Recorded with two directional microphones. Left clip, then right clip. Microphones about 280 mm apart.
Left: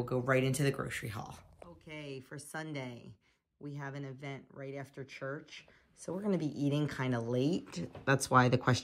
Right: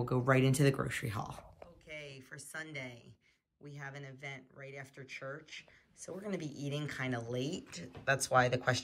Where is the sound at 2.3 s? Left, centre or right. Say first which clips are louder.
Left 2 dB; centre.